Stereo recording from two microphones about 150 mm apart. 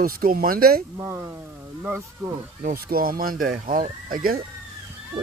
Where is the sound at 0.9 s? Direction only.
20° right (ahead or behind).